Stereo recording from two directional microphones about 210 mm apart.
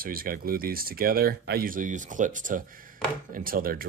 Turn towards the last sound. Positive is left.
turn(degrees=-45)  # may be behind; listen again after turning